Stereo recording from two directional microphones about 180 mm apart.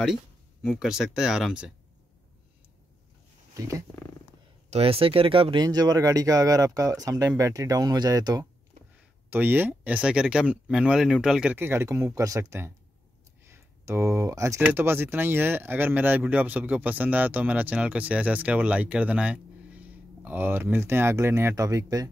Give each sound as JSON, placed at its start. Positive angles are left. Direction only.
{"t": 0.7, "sound": "speech", "side_deg": 0}
{"t": 3.5, "sound": "speech", "side_deg": -20}
{"t": 4.6, "sound": "speech", "side_deg": -35}